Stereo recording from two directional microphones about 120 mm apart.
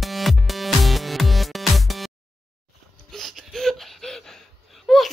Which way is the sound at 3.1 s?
Centre (ahead or behind).